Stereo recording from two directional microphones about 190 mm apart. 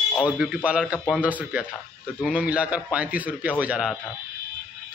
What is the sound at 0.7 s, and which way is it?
Speech, 5° right (ahead or behind).